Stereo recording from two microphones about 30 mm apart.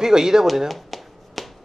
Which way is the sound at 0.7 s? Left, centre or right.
Centre.